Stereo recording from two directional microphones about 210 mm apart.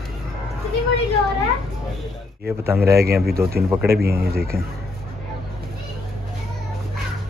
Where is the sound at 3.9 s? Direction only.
50° right (ahead or behind).